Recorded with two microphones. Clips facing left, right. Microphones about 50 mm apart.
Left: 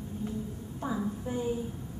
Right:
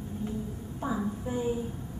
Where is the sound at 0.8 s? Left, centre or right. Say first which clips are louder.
Right 1 dB; centre.